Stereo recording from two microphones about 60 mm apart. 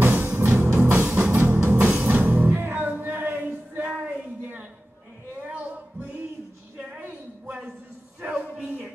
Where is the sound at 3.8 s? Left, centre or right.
Right.